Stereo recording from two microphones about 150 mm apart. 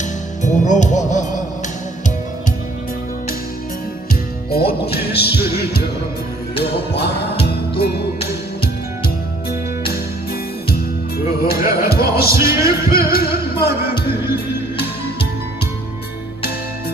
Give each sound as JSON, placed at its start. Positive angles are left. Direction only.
{"t": 0.4, "sound": "music", "side_deg": 55}
{"t": 4.1, "sound": "music", "side_deg": 90}
{"t": 11.4, "sound": "music", "side_deg": 85}